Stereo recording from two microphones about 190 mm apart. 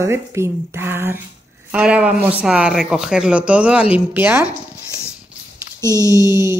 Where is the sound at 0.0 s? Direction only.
15° right (ahead or behind).